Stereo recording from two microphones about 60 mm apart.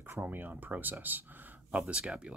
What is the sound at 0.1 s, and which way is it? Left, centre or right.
Speech, right.